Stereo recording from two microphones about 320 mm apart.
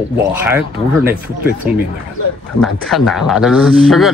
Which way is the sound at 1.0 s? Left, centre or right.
Centre.